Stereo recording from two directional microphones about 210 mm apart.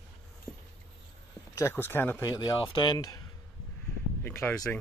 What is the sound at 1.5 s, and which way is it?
Speech, 10° left (ahead or behind).